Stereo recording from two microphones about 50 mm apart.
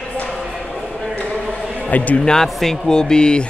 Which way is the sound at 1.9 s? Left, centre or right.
Left.